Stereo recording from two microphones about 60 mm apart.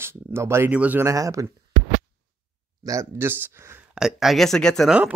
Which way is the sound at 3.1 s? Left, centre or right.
Right.